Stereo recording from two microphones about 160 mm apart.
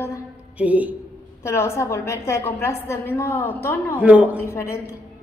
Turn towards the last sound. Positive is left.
turn(degrees=15)  # may be behind; listen again after turning